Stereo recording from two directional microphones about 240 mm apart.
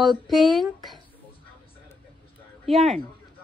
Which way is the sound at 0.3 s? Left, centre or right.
Centre.